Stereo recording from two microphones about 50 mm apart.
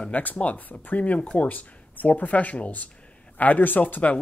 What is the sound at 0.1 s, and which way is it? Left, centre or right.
Speech, left.